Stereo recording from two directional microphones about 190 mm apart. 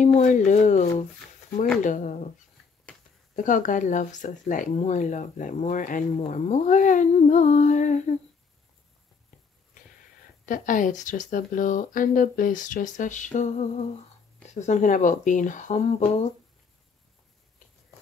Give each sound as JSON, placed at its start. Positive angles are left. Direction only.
{"t": 0.0, "sound": "speech", "side_deg": 40}
{"t": 3.3, "sound": "speech", "side_deg": 45}
{"t": 10.4, "sound": "speech", "side_deg": 45}